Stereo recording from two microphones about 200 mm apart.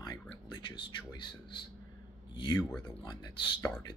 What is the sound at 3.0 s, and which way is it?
Speech, 20° left (ahead or behind).